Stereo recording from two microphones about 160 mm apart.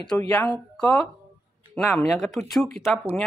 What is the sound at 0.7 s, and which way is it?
Speech, 5° left (ahead or behind).